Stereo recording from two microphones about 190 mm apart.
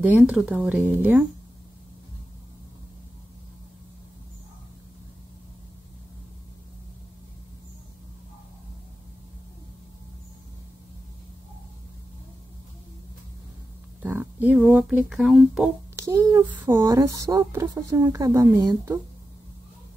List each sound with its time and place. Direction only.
0.0 s speech: 5° right (ahead or behind)
14.0 s speech: 10° right (ahead or behind)
16.0 s speech: 15° right (ahead or behind)